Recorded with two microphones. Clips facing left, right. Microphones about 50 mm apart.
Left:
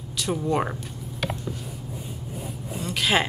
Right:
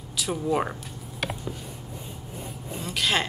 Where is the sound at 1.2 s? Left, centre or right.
Centre.